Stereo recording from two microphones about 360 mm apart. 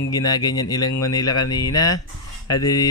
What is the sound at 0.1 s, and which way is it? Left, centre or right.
Mantra, centre.